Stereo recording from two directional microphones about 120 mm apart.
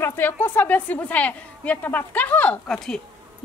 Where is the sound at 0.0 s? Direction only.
20° left (ahead or behind).